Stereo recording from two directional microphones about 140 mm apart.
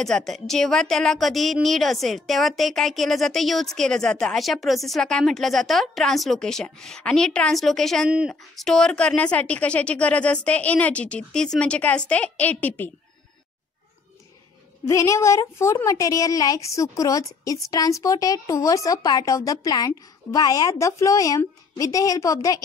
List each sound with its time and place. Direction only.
0.0 s a woman's voice: centre (ahead or behind)
14.9 s a woman's voice: 20° left (ahead or behind)